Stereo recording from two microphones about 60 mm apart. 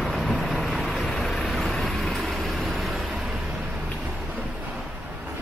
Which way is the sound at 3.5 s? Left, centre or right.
Centre.